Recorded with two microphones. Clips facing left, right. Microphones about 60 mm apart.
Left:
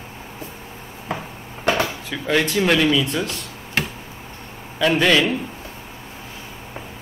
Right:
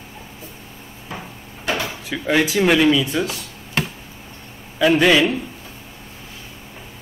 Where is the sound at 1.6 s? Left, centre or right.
Left.